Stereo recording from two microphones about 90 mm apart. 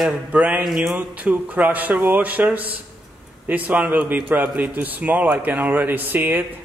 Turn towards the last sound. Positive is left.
turn(degrees=-20)  # may be behind; listen again after turning